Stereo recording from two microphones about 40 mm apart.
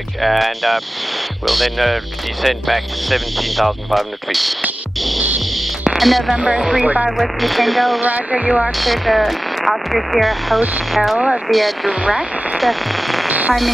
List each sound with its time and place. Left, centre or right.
0.2 s speech: centre
5.9 s speech: centre
6.3 s music: centre
7.1 s speech: centre
8.0 s speech: right
8.7 s speech: centre
12.0 s music: centre
12.5 s speech: centre
13.3 s fireworks: right